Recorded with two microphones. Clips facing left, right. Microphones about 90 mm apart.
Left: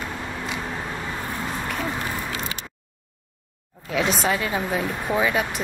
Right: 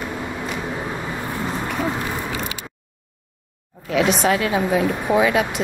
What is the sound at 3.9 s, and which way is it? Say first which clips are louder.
Speech: right 5 dB; centre (ahead or behind).